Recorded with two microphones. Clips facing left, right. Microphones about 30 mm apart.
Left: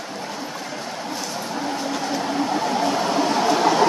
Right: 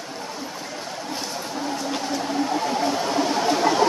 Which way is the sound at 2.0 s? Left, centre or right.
Left.